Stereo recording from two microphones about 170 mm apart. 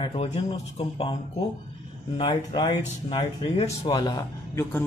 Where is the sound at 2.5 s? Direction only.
25° left (ahead or behind).